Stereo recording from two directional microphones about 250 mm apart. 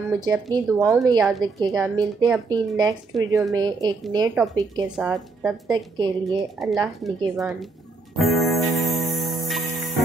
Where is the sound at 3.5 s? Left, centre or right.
Centre.